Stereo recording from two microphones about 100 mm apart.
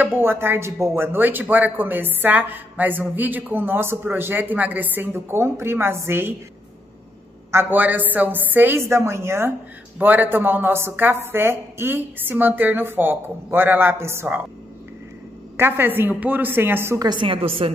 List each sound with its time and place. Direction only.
0.0 s a man's voice: 20° right (ahead or behind)
7.5 s a man's voice: 20° right (ahead or behind)
15.5 s a man's voice: 20° right (ahead or behind)
17.0 s a woman's voice: 50° right (ahead or behind); by 17.6 s 70° right (ahead or behind)